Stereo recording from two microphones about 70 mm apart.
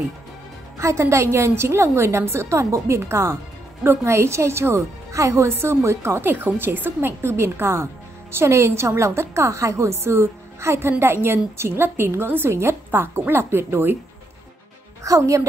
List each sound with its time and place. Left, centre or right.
0.7 s a woman's voice: right
5.5 s a woman's voice: right
15.0 s a woman's voice: right